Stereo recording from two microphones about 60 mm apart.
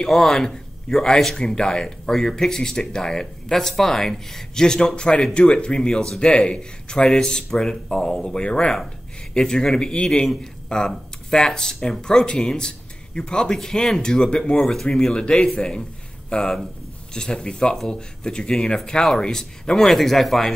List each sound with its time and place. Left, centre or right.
0.0 s a man's voice: centre